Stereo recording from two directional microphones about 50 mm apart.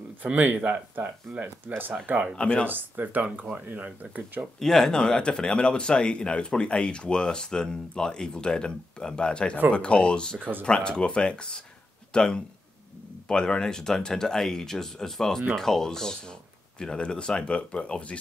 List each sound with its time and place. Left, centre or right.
0.2 s speech: right
1.3 s speech: centre
1.7 s speech: right
2.3 s speech: left
2.6 s speech: right
4.6 s speech: centre; by 18.2 s left